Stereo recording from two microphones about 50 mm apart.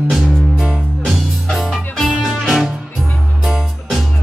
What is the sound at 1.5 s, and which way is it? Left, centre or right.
Music, centre.